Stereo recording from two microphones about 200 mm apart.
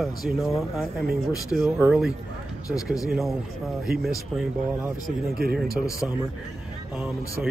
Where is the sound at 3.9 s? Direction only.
50° right (ahead or behind).